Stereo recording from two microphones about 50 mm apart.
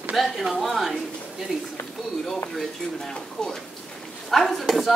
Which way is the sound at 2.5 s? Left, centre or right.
Centre.